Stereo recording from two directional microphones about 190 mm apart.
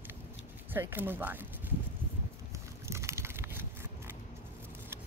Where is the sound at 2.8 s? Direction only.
15° right (ahead or behind).